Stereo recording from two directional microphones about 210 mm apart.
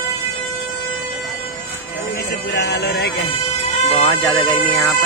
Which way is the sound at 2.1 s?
50° left (ahead or behind).